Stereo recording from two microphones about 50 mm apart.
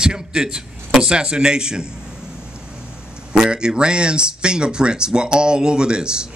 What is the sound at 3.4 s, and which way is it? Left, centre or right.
Speech, centre.